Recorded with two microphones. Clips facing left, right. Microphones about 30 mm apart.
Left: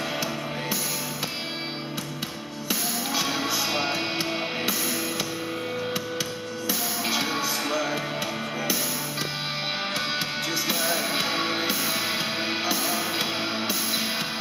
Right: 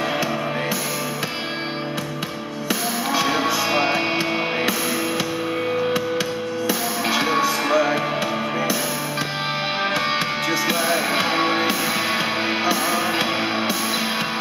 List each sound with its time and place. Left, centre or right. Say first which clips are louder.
2.7 s music: right 5 dB; centre
6.7 s music: right 4 dB; centre
7.2 s music: right 8 dB; right
9.9 s music: right 6 dB; centre